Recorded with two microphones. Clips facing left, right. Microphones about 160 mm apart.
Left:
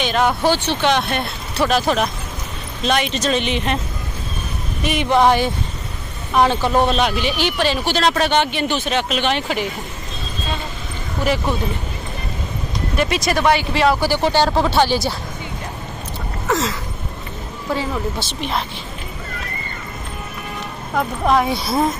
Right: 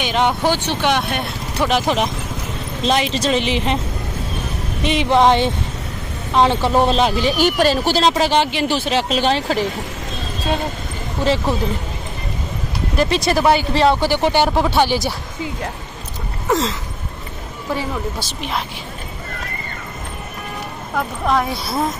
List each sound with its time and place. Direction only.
0.0 s speech: 15° right (ahead or behind)
4.8 s speech: 20° right (ahead or behind); by 8.0 s 40° right (ahead or behind)
8.0 s speech: 25° right (ahead or behind)
11.2 s speech: 30° right (ahead or behind)
12.9 s speech: 30° right (ahead or behind)
13.4 s speech: 5° right (ahead or behind)
14.0 s speech: 20° right (ahead or behind)
17.7 s speech: 10° right (ahead or behind)
20.9 s speech: 5° left (ahead or behind)